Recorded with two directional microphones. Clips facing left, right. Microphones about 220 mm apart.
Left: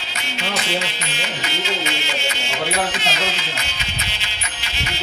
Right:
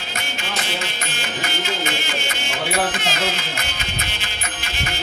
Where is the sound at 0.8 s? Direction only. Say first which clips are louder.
Left 1 dB; 50° right (ahead or behind).